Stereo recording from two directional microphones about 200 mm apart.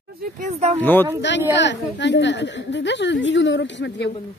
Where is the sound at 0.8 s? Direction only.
10° left (ahead or behind).